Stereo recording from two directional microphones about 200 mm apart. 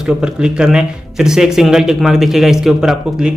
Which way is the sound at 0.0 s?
5° right (ahead or behind).